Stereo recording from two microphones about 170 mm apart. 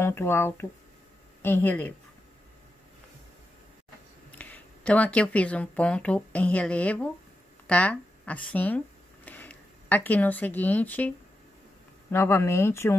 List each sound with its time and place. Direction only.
0.0 s speech: 15° left (ahead or behind)
4.3 s speech: 10° left (ahead or behind)